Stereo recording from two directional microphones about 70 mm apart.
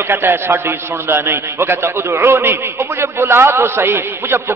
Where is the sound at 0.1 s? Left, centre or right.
Right.